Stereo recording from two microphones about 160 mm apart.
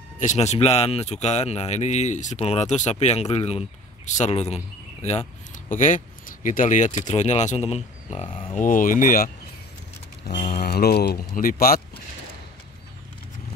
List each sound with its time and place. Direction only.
0.2 s speech: 50° left (ahead or behind)
5.5 s speech: 55° left (ahead or behind); by 8.5 s 35° left (ahead or behind)
8.5 s speech: 55° left (ahead or behind)
10.3 s speech: 45° left (ahead or behind)
10.6 s speech: 75° left (ahead or behind)